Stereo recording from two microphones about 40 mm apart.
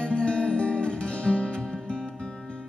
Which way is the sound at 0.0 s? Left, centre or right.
Left.